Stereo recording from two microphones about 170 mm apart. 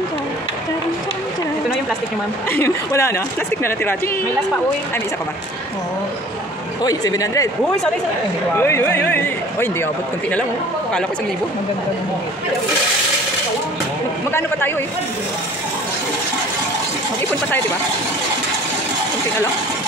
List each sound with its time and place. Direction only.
2.5 s speech: 15° left (ahead or behind)
6.8 s speech: 20° left (ahead or behind)
7.6 s speech: 5° left (ahead or behind)
8.5 s speech: 15° left (ahead or behind)